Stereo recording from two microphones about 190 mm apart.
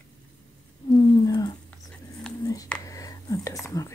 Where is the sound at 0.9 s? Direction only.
20° left (ahead or behind).